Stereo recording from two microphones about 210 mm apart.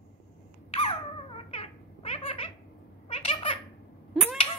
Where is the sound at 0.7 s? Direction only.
25° left (ahead or behind).